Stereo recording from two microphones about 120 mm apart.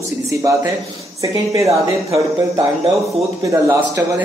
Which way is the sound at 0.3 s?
25° right (ahead or behind).